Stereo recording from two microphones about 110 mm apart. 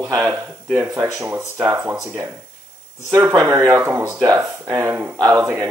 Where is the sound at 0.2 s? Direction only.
25° right (ahead or behind).